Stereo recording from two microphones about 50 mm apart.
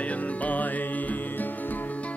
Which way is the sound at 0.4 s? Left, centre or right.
Left.